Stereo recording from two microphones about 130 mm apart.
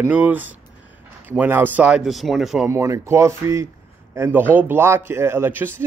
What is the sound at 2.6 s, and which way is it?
A man's voice, 20° right (ahead or behind).